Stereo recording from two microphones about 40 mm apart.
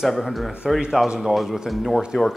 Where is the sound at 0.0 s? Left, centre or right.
Centre.